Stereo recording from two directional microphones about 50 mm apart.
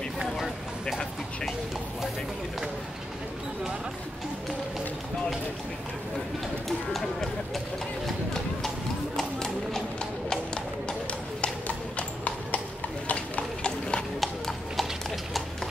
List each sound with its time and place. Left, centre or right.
6.9 s clip-clop: centre
10.3 s music: centre
11.4 s clip-clop: left
14.2 s clip-clop: centre